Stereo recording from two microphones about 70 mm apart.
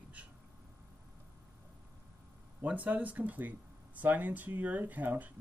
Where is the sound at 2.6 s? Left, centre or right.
Right.